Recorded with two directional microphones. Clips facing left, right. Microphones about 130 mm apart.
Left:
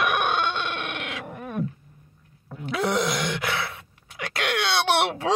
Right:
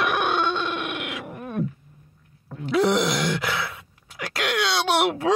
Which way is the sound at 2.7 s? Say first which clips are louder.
Right 4 dB; 25° right (ahead or behind).